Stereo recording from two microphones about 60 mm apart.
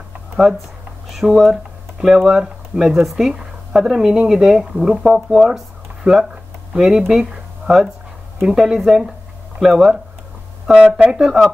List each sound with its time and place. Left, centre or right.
0.4 s speech: centre
6.7 s speech: centre
11.1 s speech: centre